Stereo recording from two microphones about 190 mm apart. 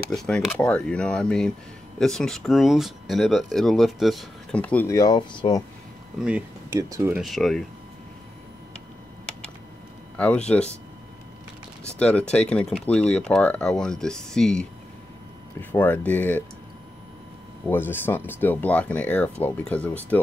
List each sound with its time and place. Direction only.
0.6 s speech: 5° left (ahead or behind); by 5.6 s 25° left (ahead or behind)
6.1 s speech: 5° right (ahead or behind)
6.7 s speech: 15° right (ahead or behind)
7.2 s speech: centre (ahead or behind)
10.1 s speech: 5° left (ahead or behind)
12.0 s speech: 5° left (ahead or behind)
15.7 s speech: 10° left (ahead or behind)
17.6 s speech: 10° left (ahead or behind)